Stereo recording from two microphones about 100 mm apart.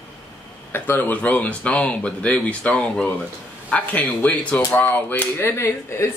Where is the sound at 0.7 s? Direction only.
20° left (ahead or behind).